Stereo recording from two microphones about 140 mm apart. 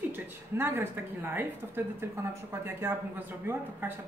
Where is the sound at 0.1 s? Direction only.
15° right (ahead or behind).